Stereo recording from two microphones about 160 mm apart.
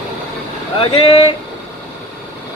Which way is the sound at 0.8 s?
30° left (ahead or behind).